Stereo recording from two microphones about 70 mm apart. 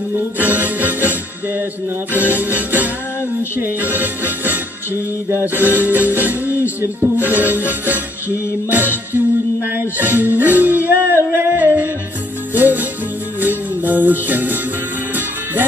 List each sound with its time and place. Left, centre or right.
0.1 s music: right
2.1 s music: right
9.9 s music: right